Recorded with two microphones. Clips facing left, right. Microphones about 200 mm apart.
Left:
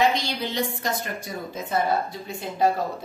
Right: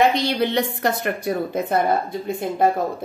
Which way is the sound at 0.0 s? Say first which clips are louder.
Right 5 dB; 60° right (ahead or behind).